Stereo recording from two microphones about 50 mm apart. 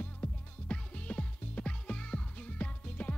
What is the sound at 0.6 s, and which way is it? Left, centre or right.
Music, left.